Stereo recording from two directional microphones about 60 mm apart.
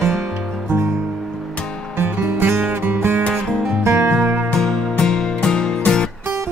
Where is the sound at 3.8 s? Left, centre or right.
Right.